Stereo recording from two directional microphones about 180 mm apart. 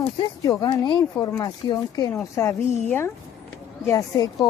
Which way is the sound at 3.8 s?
20° left (ahead or behind).